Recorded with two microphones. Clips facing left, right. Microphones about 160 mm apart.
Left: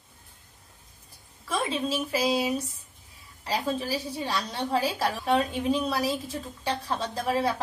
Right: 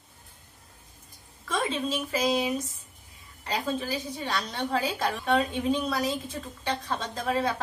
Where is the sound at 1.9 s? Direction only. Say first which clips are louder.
Left 1 dB; 10° left (ahead or behind).